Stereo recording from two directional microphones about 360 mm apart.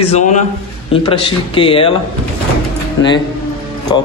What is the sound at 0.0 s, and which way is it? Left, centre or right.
A man's voice, centre.